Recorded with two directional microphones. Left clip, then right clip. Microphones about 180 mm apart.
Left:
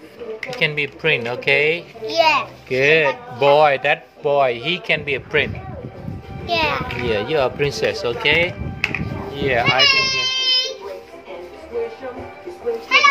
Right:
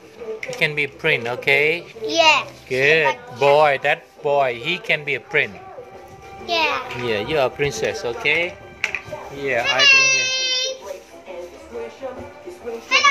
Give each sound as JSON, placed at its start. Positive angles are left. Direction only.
{"t": 0.6, "sound": "speech", "side_deg": 0}
{"t": 2.0, "sound": "a child's voice", "side_deg": -30}
{"t": 2.7, "sound": "speech", "side_deg": 5}
{"t": 6.4, "sound": "a child's voice", "side_deg": -5}
{"t": 9.8, "sound": "baby cry", "side_deg": -20}